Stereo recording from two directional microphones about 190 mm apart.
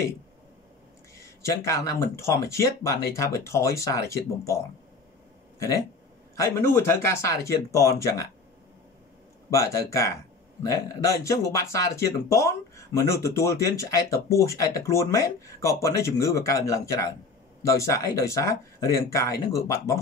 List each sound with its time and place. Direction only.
1.1 s speech: 15° left (ahead or behind)
6.3 s speech: 15° left (ahead or behind)
9.5 s speech: 15° left (ahead or behind)